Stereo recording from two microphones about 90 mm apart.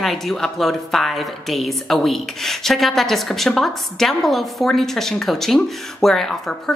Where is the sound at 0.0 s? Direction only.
Centre (ahead or behind).